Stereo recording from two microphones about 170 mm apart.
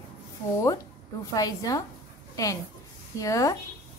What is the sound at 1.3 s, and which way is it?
A woman's voice, 20° left (ahead or behind).